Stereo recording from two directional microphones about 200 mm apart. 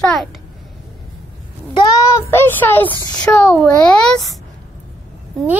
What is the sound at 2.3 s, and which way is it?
Speech, 10° left (ahead or behind).